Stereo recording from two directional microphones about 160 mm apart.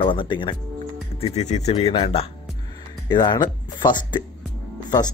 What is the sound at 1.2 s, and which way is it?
Speech, 45° left (ahead or behind).